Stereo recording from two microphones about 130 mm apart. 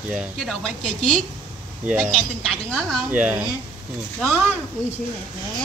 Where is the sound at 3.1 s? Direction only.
15° right (ahead or behind).